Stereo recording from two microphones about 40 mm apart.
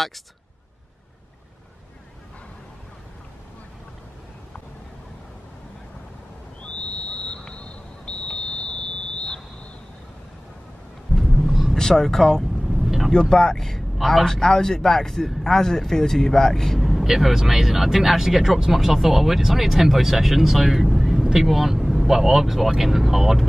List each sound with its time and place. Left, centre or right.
6.6 s a sound: left
8.3 s buzzer: left
11.1 s vehicle: centre
11.7 s speech: centre
12.6 s vehicle: centre
13.1 s speech: centre